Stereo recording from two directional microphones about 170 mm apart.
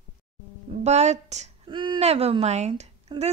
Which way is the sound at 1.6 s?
30° right (ahead or behind).